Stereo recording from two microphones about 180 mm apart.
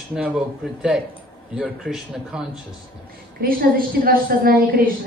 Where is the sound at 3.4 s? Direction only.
55° right (ahead or behind).